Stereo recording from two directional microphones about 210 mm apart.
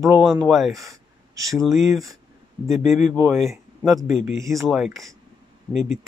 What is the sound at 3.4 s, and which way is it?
Speech, centre (ahead or behind).